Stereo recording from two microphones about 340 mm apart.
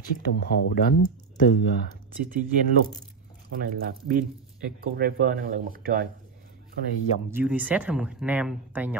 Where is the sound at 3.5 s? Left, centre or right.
Right.